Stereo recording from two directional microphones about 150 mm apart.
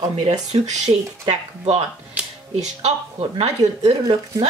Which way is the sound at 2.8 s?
45° right (ahead or behind).